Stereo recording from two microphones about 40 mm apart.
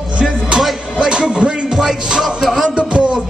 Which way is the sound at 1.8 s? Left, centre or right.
Centre.